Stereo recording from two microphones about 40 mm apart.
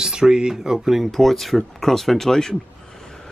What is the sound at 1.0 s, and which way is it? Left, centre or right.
Speech, centre.